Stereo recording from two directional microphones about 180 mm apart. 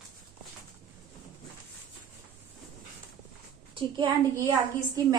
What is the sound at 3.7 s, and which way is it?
Speech, 25° right (ahead or behind).